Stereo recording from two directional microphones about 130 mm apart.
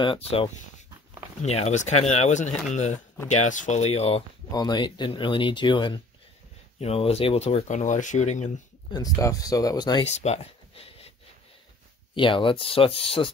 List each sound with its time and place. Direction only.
0.0 s speech: 45° left (ahead or behind)
4.5 s speech: 30° left (ahead or behind)
6.8 s speech: 50° left (ahead or behind)
8.9 s speech: 25° left (ahead or behind)
10.0 s a sound: 55° left (ahead or behind)
12.1 s speech: 40° left (ahead or behind)